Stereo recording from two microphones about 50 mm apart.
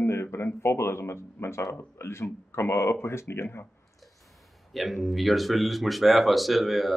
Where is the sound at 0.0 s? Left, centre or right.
Left.